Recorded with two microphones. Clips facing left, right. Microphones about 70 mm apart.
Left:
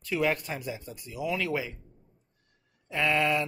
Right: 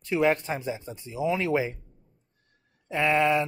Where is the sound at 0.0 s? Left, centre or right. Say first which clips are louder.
Right 4 dB; right.